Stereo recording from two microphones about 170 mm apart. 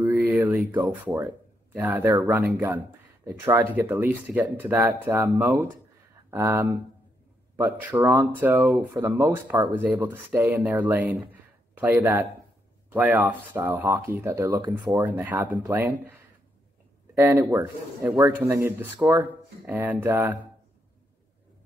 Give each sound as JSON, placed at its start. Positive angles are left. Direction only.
{"t": 0.3, "sound": "speech", "side_deg": -5}
{"t": 17.2, "sound": "speech", "side_deg": -15}